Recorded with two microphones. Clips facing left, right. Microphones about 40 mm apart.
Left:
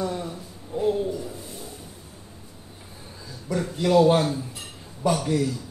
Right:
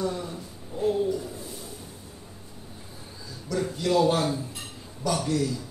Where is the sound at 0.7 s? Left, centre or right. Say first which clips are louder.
Left 2 dB; left.